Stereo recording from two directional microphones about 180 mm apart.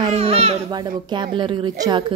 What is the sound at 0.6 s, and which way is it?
A woman's voice, 20° right (ahead or behind).